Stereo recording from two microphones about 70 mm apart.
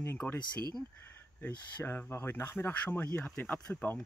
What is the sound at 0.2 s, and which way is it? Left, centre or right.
Speech, left.